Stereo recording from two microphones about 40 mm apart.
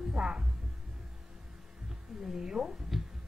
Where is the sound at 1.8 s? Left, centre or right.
Centre.